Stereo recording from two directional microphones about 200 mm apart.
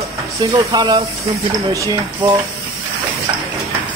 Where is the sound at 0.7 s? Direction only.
20° right (ahead or behind).